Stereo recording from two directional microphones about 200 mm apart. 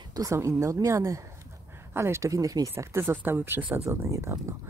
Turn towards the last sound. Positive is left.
turn(degrees=-15)  # may be behind; listen again after turning